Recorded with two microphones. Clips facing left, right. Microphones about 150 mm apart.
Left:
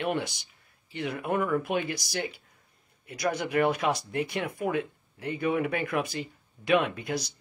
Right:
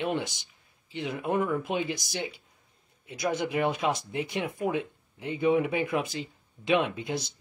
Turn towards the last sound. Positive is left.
turn(degrees=-20)  # may be behind; listen again after turning